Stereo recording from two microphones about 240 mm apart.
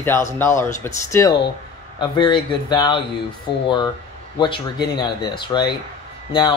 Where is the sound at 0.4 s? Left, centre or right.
Centre.